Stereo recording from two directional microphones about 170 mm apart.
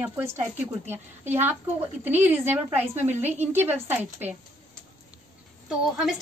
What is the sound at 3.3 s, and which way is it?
Speech, 40° right (ahead or behind).